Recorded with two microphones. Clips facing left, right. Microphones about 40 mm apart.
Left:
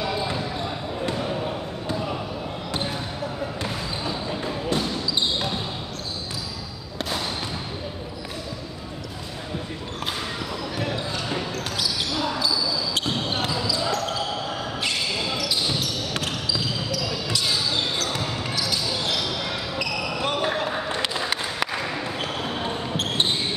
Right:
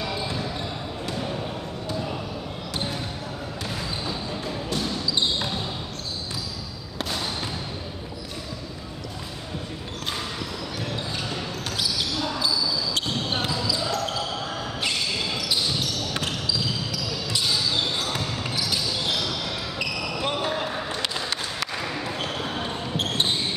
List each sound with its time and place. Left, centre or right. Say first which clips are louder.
1.0 s basketball bounce: left 4 dB; centre
10.8 s basketball bounce: left 3 dB; centre
17.9 s basketball bounce: left 1 dB; centre
19.0 s basketball bounce: left 1 dB; centre
20.4 s basketball bounce: left 2 dB; centre
21.1 s a sound: left 3 dB; centre
22.0 s basketball bounce: left 1 dB; centre